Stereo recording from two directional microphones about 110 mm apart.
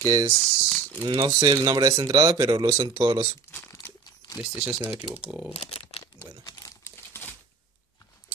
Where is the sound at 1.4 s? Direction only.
40° right (ahead or behind).